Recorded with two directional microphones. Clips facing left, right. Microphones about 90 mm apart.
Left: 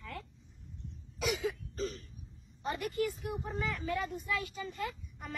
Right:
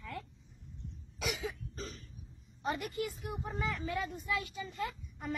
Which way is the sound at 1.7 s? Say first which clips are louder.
Left 7 dB; centre (ahead or behind).